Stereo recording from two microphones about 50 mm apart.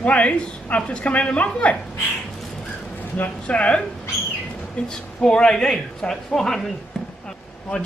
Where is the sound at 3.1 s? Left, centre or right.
Left.